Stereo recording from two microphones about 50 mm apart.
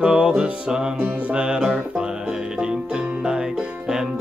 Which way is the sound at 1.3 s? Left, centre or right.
Centre.